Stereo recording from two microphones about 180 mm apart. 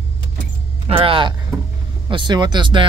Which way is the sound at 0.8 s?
30° right (ahead or behind).